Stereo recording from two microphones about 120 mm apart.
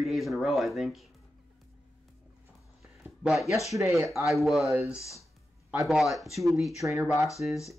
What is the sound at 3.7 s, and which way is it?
Speech, 25° right (ahead or behind).